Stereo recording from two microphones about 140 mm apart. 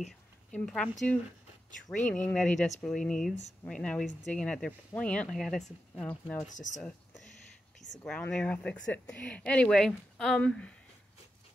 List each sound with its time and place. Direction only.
0.0 s a sound: 5° left (ahead or behind)
2.0 s speech: 5° left (ahead or behind)
6.5 s speech: 60° left (ahead or behind)
8.1 s speech: 5° left (ahead or behind)